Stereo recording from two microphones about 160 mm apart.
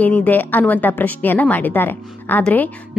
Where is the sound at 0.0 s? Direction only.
10° left (ahead or behind).